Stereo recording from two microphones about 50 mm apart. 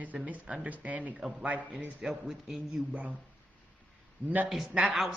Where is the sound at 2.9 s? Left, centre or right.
Right.